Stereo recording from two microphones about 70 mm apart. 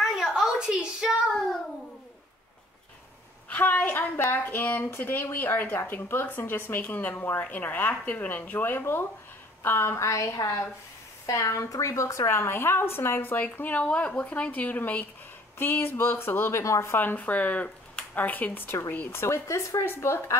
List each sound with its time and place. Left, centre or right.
0.0 s a sound: centre
3.4 s a woman's voice: left
10.0 s a woman's voice: left
16.9 s speech: left
18.9 s a woman's voice: left
19.8 s a woman's voice: left